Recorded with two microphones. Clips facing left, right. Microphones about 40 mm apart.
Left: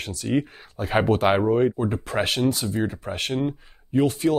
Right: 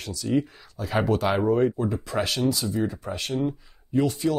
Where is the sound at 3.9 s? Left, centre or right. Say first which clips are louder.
Left 3 dB; left.